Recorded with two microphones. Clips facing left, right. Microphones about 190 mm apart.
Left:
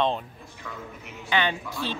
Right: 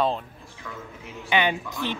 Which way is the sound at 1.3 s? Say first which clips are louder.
Right 2 dB; 15° right (ahead or behind).